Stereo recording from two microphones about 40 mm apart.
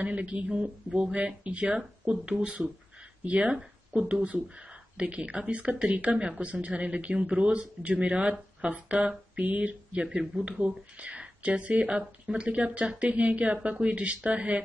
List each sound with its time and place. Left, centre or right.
0.0 s speech: right
9.3 s a sound: right
10.0 s speech: centre
10.6 s speech: right